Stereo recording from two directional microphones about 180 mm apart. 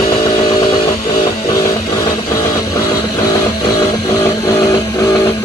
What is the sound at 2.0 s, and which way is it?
Vehicle, 15° left (ahead or behind).